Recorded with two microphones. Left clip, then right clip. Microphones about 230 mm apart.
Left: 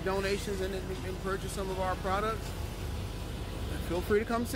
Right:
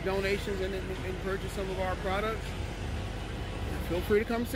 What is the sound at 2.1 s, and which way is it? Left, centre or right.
Speech, centre.